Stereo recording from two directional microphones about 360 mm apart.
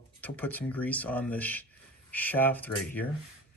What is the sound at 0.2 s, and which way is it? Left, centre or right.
Speech, centre.